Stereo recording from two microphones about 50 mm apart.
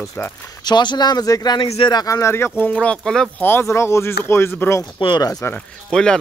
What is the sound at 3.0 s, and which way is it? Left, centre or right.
Speech, centre.